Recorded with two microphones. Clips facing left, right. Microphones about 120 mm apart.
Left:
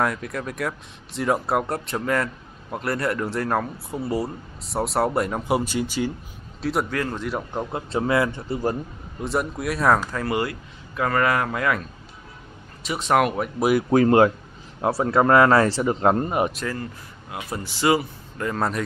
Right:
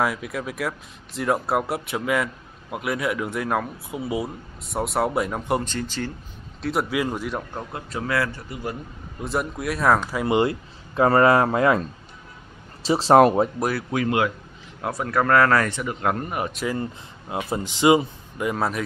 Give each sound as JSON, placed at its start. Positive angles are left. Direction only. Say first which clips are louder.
{"t": 0.0, "sound": "speech", "louder": "even", "side_deg": -5}
{"t": 6.6, "sound": "speech", "louder": "right 1 dB", "side_deg": 0}
{"t": 7.5, "sound": "speech", "louder": "left 5 dB", "side_deg": 25}
{"t": 9.2, "sound": "speech", "louder": "left 1 dB", "side_deg": 0}
{"t": 10.1, "sound": "speech", "louder": "right 4 dB", "side_deg": -20}
{"t": 13.8, "sound": "speech", "louder": "left 8 dB", "side_deg": 40}
{"t": 14.8, "sound": "speech", "louder": "left 4 dB", "side_deg": 25}
{"t": 16.7, "sound": "speech", "louder": "right 4 dB", "side_deg": -25}